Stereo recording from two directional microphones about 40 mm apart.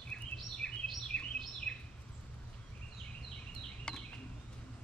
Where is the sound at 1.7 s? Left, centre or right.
Centre.